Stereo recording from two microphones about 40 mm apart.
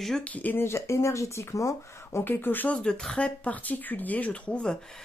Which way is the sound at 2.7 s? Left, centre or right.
Centre.